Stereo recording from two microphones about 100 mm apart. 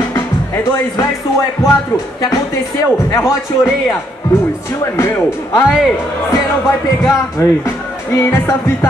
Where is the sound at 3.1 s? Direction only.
35° left (ahead or behind).